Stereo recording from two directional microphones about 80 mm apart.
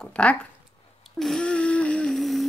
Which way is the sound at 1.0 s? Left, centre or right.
Centre.